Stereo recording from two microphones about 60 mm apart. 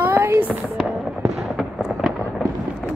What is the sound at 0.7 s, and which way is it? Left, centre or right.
Fireworks, centre.